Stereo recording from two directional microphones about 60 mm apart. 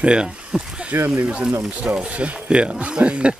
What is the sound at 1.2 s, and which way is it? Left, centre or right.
Speech, centre.